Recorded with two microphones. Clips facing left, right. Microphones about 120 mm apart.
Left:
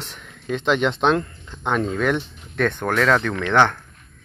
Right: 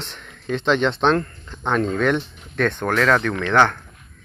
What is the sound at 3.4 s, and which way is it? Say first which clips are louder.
Speech: even; 15° left (ahead or behind).